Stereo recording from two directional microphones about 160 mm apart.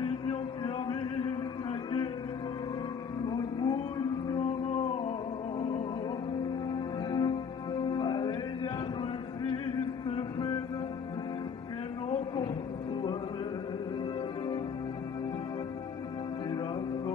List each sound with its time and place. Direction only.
3.3 s whale vocalization: 25° left (ahead or behind)
4.4 s whale vocalization: 45° left (ahead or behind)
6.7 s music: 30° left (ahead or behind)
10.0 s mantra: 35° left (ahead or behind)